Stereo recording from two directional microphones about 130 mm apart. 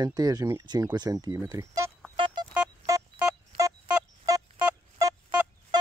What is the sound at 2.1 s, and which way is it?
Music, 40° right (ahead or behind).